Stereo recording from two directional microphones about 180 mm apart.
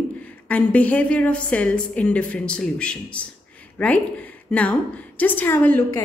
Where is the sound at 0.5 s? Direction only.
5° left (ahead or behind).